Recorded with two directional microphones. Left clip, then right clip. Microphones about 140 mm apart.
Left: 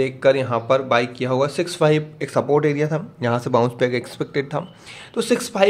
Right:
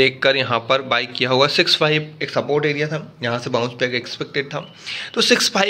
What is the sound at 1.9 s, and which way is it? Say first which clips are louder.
Speech: left 1 dB; 35° left (ahead or behind).